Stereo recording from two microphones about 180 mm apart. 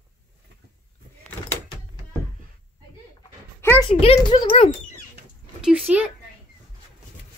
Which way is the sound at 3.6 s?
15° left (ahead or behind).